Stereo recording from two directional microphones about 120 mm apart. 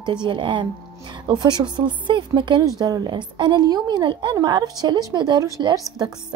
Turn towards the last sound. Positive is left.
turn(degrees=-30)  # may be behind; listen again after turning